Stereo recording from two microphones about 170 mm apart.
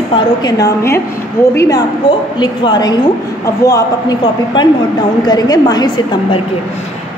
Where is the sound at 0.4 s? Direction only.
20° left (ahead or behind).